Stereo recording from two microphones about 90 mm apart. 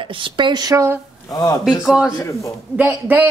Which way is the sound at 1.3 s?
40° left (ahead or behind).